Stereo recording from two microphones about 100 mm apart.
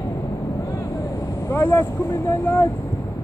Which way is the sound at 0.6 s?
35° left (ahead or behind).